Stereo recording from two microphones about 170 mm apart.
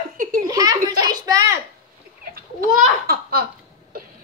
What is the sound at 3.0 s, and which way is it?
Laughter, 65° right (ahead or behind).